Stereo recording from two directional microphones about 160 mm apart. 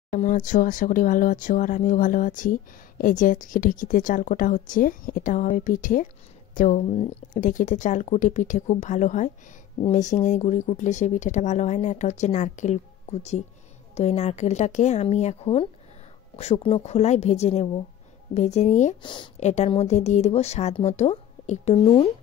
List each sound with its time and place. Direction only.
0.1 s speech: 55° left (ahead or behind)
16.6 s speech: 40° left (ahead or behind)
19.0 s speech: 30° left (ahead or behind)
19.4 s speech: 45° left (ahead or behind)